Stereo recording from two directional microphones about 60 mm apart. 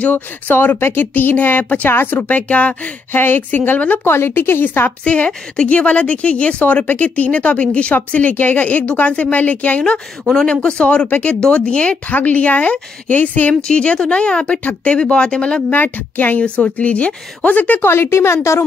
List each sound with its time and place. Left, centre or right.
0.0 s speech: left
1.9 s speech: left
5.0 s speech: left
13.7 s speech: centre
14.6 s speech: left
15.0 s speech: centre
15.7 s speech: left
16.4 s speech: left
17.8 s speech: left